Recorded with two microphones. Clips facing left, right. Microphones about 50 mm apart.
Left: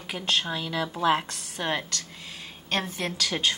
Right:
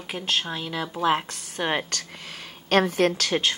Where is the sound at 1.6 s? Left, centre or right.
Right.